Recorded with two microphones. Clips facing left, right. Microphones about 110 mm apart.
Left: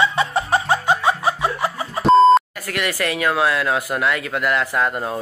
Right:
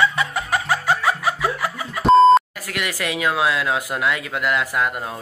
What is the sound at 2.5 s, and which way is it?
Speech, 15° right (ahead or behind).